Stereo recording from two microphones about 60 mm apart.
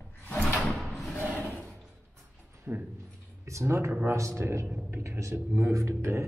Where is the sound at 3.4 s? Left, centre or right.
Right.